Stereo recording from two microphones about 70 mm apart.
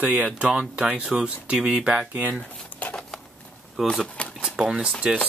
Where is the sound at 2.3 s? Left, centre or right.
Left.